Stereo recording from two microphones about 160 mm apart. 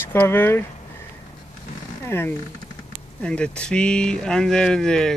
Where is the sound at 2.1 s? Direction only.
15° left (ahead or behind).